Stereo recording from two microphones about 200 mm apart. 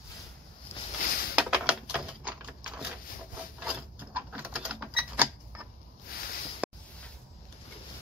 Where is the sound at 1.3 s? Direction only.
5° right (ahead or behind).